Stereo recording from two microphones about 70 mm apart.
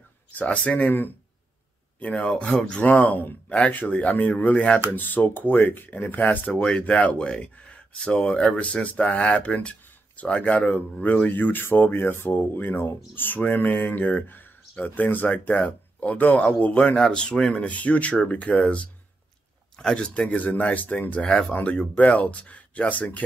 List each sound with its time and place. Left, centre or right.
0.3 s speech: left
2.2 s speech: centre
3.0 s speech: left
4.9 s speech: left
21.2 s speech: centre